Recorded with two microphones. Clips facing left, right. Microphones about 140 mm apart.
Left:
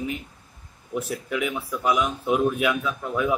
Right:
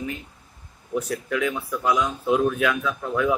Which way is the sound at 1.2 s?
15° left (ahead or behind).